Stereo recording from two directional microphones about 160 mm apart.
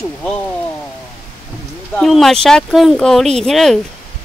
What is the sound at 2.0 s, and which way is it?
Speech, centre (ahead or behind).